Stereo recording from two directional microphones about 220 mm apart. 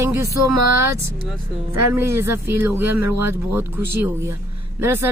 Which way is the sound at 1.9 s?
10° right (ahead or behind).